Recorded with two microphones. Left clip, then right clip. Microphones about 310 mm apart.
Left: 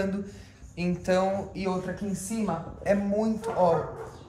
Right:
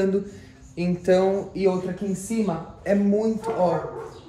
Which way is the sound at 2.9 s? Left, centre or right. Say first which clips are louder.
Right 4 dB; centre.